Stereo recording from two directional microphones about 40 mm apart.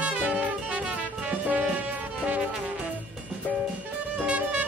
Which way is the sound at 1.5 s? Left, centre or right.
Right.